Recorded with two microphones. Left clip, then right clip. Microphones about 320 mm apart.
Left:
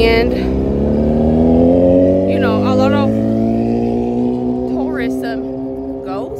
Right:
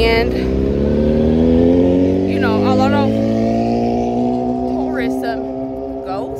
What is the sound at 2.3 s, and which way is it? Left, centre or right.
Music, centre.